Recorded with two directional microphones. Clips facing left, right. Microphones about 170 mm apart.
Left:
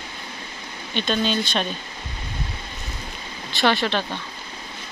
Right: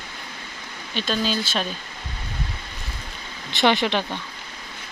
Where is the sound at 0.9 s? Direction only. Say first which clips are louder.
Left 2 dB; 5° right (ahead or behind).